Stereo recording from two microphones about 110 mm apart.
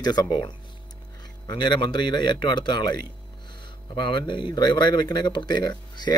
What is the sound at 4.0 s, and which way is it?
Speech, 45° left (ahead or behind).